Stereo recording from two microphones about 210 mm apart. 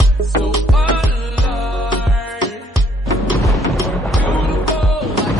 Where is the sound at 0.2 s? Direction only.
Centre (ahead or behind).